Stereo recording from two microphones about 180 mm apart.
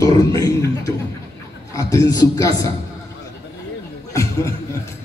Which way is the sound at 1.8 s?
20° left (ahead or behind).